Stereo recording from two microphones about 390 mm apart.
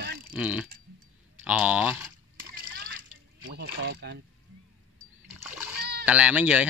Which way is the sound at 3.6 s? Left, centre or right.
Right.